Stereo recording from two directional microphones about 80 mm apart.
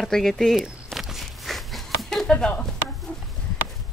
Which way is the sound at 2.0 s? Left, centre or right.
Centre.